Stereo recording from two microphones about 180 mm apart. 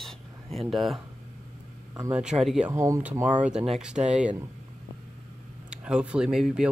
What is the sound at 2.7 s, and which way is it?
A man's voice, 15° right (ahead or behind).